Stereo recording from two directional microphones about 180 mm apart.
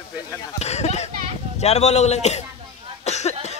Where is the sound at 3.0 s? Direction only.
40° left (ahead or behind).